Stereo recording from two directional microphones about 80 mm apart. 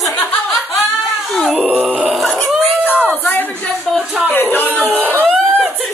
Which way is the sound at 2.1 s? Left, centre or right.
Centre.